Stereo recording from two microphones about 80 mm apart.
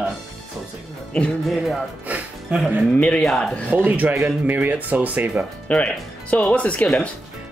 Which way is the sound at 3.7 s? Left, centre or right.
Centre.